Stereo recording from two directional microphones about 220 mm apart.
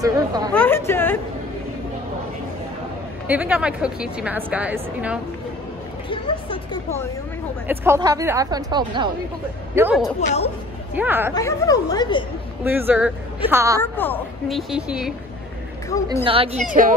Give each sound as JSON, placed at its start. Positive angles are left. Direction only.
{"t": 0.0, "sound": "a woman's voice", "side_deg": -15}
{"t": 0.5, "sound": "speech", "side_deg": 10}
{"t": 3.3, "sound": "a woman's voice", "side_deg": -5}
{"t": 6.0, "sound": "speech", "side_deg": 20}
{"t": 7.6, "sound": "a woman's voice", "side_deg": -10}
{"t": 9.8, "sound": "a woman's voice", "side_deg": -10}
{"t": 10.2, "sound": "speech", "side_deg": 30}
{"t": 11.0, "sound": "a woman's voice", "side_deg": -10}
{"t": 11.3, "sound": "speech", "side_deg": 15}
{"t": 12.6, "sound": "a woman's voice", "side_deg": -10}
{"t": 13.7, "sound": "speech", "side_deg": 10}
{"t": 14.7, "sound": "a woman's voice", "side_deg": -5}
{"t": 16.3, "sound": "a woman's voice", "side_deg": -25}
{"t": 16.6, "sound": "speech", "side_deg": -40}